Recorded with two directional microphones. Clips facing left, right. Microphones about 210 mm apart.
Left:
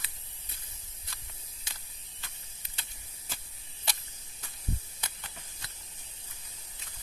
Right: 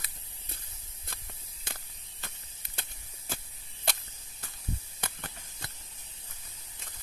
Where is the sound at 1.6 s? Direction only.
55° right (ahead or behind).